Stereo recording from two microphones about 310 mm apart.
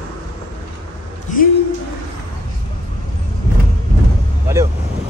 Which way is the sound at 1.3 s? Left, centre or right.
Left.